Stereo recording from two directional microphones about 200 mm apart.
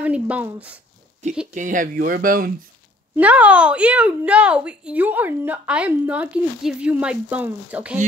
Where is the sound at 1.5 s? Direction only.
40° right (ahead or behind).